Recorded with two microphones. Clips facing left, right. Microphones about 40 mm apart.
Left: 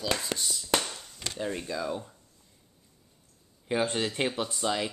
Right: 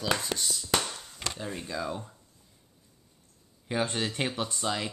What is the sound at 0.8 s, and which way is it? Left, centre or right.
Chop, centre.